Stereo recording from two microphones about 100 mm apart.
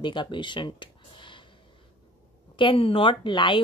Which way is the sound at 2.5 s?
60° left (ahead or behind).